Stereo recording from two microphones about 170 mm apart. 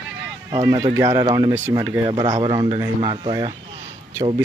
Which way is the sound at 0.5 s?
20° right (ahead or behind).